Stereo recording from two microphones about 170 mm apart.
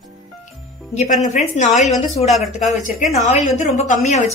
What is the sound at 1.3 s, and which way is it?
Speech, 45° left (ahead or behind).